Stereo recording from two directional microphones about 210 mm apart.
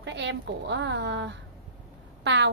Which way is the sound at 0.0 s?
55° right (ahead or behind).